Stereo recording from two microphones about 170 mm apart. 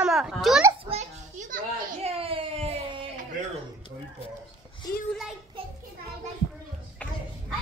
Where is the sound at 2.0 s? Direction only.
35° right (ahead or behind).